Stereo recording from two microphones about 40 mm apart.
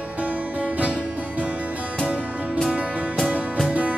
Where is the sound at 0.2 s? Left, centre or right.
Right.